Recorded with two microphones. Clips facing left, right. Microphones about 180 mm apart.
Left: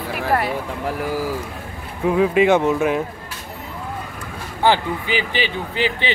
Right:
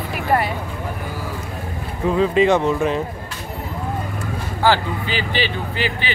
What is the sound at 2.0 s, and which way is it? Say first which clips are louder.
Speech: even; 10° left (ahead or behind).